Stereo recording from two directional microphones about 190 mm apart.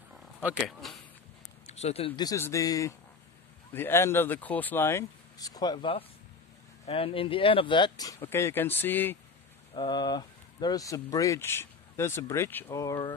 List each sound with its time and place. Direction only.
0.4 s speech: 5° right (ahead or behind)
1.7 s speech: 35° left (ahead or behind); by 9.2 s 10° left (ahead or behind)
9.8 s speech: 20° left (ahead or behind)